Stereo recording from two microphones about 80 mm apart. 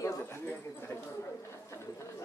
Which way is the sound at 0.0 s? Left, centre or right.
Left.